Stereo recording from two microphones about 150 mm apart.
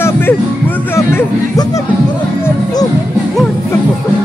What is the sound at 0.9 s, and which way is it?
Speech, 15° left (ahead or behind).